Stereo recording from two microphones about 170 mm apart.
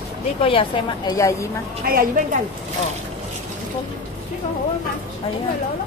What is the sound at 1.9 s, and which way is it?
Speech, 60° right (ahead or behind).